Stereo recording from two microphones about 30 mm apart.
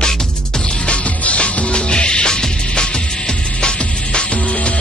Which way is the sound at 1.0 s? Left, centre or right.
Left.